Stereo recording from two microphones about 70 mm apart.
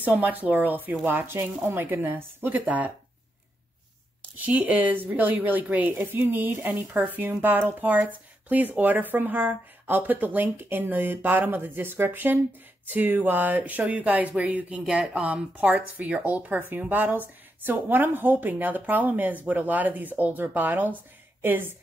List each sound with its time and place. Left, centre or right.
0.0 s a woman's voice: right
4.5 s a woman's voice: right